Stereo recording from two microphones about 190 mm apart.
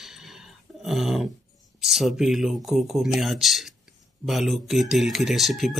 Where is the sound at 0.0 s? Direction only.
Centre (ahead or behind).